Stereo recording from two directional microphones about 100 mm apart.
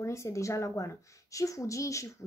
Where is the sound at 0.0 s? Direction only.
30° left (ahead or behind).